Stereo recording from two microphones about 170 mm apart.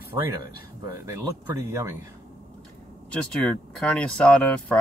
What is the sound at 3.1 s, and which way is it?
Speech, 5° left (ahead or behind).